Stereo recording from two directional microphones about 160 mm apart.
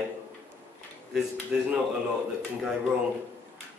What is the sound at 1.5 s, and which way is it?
Speech, 5° right (ahead or behind).